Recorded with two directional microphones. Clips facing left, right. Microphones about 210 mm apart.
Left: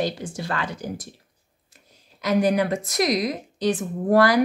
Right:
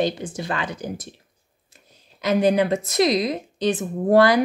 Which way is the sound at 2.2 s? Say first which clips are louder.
Right 2 dB; 25° right (ahead or behind).